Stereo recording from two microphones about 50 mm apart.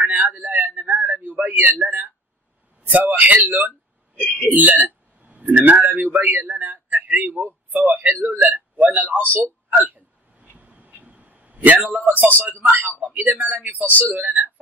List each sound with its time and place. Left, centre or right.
0.0 s a sound: right
2.9 s speech: right
4.2 s speech: left
4.5 s a man's voice: right
9.3 s a sound: right
13.0 s speech: right